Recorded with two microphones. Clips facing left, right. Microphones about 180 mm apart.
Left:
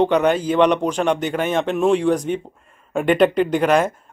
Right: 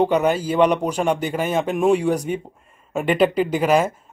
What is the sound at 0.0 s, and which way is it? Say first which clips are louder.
A man's voice: left 2 dB; 5° right (ahead or behind).